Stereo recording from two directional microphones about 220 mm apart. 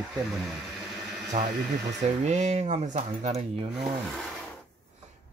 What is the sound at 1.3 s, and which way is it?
Speech, 30° right (ahead or behind).